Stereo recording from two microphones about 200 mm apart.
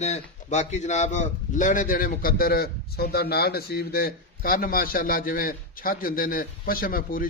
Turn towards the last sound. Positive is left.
turn(degrees=45)  # may be behind; listen again after turning